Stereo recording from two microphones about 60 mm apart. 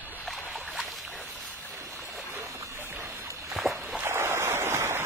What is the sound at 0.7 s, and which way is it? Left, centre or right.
Boat, centre.